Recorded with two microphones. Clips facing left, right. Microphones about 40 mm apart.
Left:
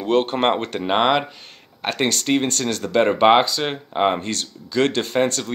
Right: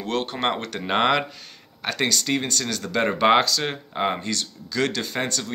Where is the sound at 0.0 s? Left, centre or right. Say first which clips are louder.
Left 7 dB; left.